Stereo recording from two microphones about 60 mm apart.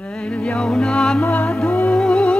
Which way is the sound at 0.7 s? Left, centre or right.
Centre.